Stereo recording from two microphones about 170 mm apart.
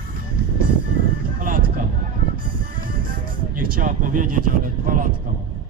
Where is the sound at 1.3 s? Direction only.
50° right (ahead or behind).